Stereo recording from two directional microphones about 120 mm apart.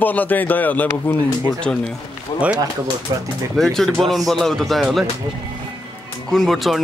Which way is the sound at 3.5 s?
Centre (ahead or behind).